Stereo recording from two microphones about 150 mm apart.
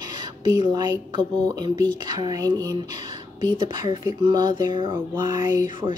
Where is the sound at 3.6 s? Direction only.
30° right (ahead or behind).